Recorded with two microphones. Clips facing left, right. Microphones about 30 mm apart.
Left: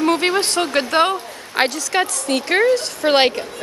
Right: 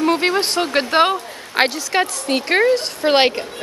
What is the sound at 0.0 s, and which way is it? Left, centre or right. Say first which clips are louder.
A woman's voice: even; centre.